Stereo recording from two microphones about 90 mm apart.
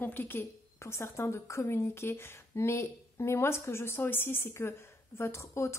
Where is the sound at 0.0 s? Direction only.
20° left (ahead or behind).